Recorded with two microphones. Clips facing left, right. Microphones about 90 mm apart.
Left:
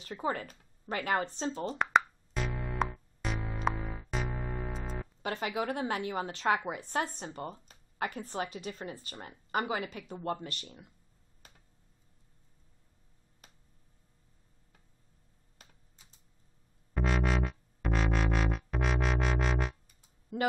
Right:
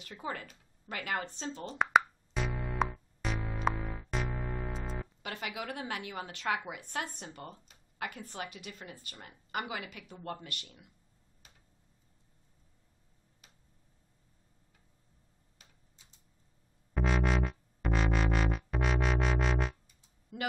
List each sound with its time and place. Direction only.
0.0 s a woman's voice: 35° left (ahead or behind)
1.8 s music: 5° right (ahead or behind)
5.2 s a woman's voice: 35° left (ahead or behind)
11.4 s tick-tock: 45° left (ahead or behind)
13.4 s a sound: 45° left (ahead or behind)
16.9 s music: centre (ahead or behind)